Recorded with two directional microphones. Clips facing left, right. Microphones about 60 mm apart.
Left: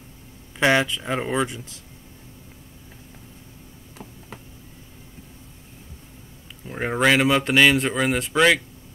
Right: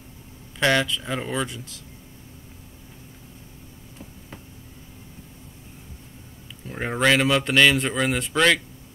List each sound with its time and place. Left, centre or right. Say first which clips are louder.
0.6 s speech: left 2 dB; centre
6.6 s speech: left 2 dB; centre